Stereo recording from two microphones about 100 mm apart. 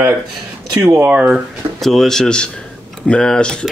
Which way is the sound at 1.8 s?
Centre (ahead or behind).